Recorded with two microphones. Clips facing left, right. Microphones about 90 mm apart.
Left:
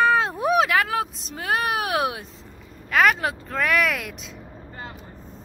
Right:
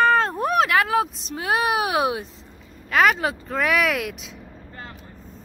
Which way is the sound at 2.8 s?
Centre (ahead or behind).